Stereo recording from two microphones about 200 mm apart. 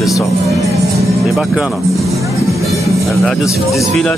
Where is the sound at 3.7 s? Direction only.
Centre (ahead or behind).